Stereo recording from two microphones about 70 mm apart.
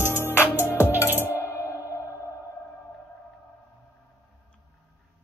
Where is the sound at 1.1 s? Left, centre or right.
Right.